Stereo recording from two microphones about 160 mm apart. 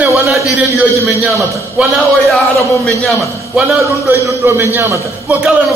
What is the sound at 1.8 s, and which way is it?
A man's voice, centre (ahead or behind).